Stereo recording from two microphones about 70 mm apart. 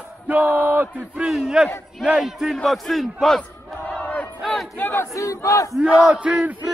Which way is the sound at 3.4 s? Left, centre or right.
Centre.